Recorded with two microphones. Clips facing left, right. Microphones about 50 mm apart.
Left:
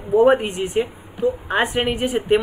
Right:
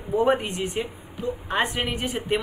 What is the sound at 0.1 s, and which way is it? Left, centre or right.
A woman's voice, centre.